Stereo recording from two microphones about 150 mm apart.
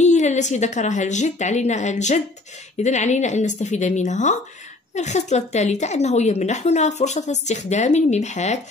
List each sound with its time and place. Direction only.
0.0 s speech: 50° left (ahead or behind)